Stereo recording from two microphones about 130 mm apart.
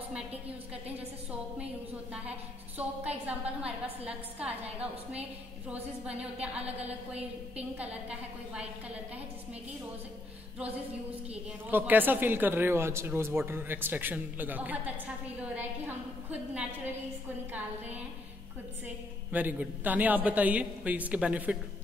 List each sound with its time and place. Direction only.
0.8 s a woman's voice: 10° right (ahead or behind)
2.8 s a woman's voice: 10° right (ahead or behind)
6.6 s a woman's voice: 55° right (ahead or behind)
7.5 s a woman's voice: 10° right (ahead or behind)
11.7 s a woman's voice: 15° right (ahead or behind)
19.3 s a woman's voice: 15° right (ahead or behind)